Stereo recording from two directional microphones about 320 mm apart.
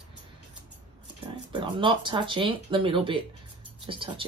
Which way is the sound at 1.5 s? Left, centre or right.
Centre.